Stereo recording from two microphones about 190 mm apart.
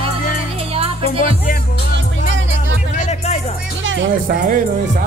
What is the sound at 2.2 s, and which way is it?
Music, 85° right.